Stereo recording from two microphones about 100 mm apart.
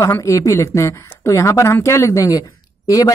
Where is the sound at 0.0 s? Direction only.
30° left (ahead or behind).